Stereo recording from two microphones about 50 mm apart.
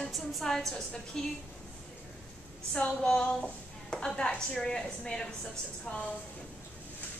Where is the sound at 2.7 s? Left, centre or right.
Centre.